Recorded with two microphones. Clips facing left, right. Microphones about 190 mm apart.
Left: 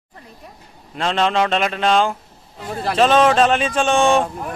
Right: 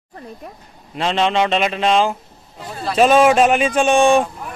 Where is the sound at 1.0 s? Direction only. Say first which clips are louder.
Right 1 dB; centre (ahead or behind).